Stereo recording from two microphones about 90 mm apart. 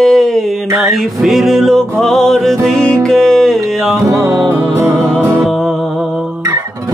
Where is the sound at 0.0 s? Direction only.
5° left (ahead or behind).